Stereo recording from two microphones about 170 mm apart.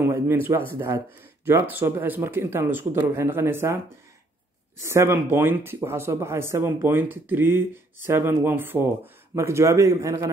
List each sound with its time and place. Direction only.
0.0 s speech: 15° right (ahead or behind)